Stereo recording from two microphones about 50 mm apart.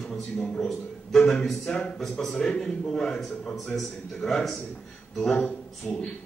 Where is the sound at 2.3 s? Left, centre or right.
Left.